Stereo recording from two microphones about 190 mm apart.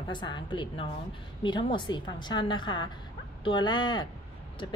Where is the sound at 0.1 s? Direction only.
25° left (ahead or behind).